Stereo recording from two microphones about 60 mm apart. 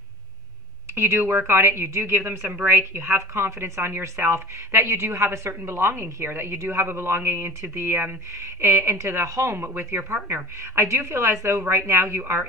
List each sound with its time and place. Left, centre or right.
0.9 s speech: right
1.6 s speech: right
2.4 s speech: right
8.4 s speech: right
12.2 s speech: right